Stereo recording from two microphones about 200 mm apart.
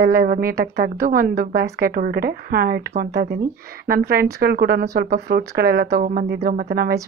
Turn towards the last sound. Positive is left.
turn(degrees=-50)  # may be behind; listen again after turning